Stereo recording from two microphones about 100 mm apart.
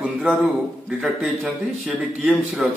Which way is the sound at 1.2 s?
15° right (ahead or behind).